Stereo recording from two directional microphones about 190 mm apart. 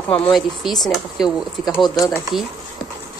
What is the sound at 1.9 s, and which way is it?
Speech, 20° left (ahead or behind).